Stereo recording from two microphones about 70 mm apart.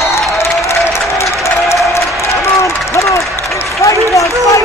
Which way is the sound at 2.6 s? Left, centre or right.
Left.